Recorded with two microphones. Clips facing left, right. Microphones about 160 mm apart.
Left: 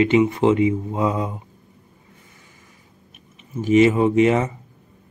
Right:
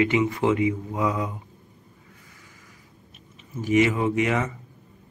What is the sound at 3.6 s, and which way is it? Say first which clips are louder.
Speech: left 6 dB; 25° left (ahead or behind).